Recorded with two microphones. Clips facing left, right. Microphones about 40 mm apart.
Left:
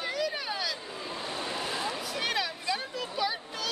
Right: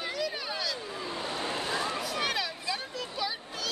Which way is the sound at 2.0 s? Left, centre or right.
Centre.